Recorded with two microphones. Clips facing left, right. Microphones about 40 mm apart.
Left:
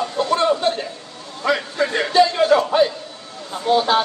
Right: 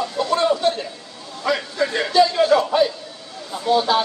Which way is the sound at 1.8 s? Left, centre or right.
Left.